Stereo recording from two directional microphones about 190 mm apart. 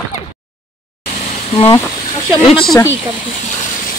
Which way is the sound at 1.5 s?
30° left (ahead or behind).